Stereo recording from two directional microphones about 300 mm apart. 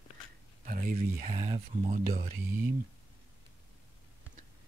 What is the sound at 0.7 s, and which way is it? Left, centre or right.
Speech, right.